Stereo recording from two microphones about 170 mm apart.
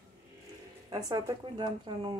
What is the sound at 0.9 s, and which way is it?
Speech, 20° right (ahead or behind).